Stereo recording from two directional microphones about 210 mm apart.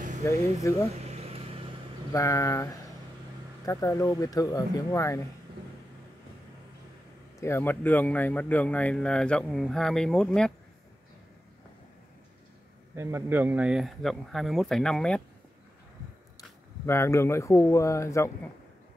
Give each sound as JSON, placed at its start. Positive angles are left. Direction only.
{"t": 0.2, "sound": "speech", "side_deg": 10}
{"t": 1.0, "sound": "vehicle", "side_deg": -30}
{"t": 2.1, "sound": "speech", "side_deg": 15}
{"t": 7.3, "sound": "speech", "side_deg": 10}
{"t": 12.9, "sound": "speech", "side_deg": -10}
{"t": 16.3, "sound": "speech", "side_deg": 10}